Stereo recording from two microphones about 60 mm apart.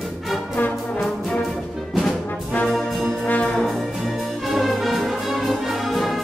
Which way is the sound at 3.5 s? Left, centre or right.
Centre.